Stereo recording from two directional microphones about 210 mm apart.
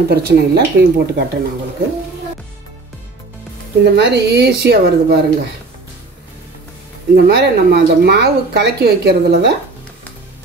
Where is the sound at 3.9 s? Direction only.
55° right (ahead or behind).